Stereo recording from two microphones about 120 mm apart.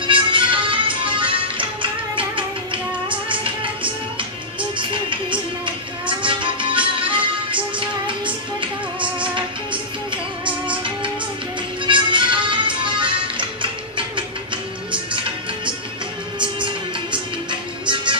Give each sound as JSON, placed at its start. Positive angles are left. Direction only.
{"t": 0.0, "sound": "music", "side_deg": -45}
{"t": 4.7, "sound": "music", "side_deg": -45}
{"t": 8.5, "sound": "music", "side_deg": -45}
{"t": 11.8, "sound": "music", "side_deg": -45}